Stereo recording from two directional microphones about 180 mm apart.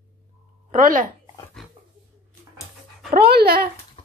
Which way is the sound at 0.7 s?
50° right (ahead or behind).